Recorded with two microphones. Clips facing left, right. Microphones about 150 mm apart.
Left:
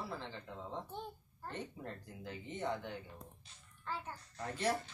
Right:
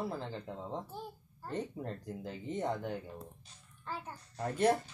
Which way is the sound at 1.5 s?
35° right (ahead or behind).